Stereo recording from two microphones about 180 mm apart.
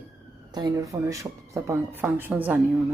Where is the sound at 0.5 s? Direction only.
20° right (ahead or behind).